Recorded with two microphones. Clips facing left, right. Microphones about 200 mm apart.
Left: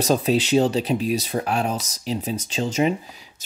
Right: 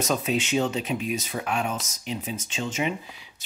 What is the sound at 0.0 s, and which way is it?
Speech, 35° left (ahead or behind).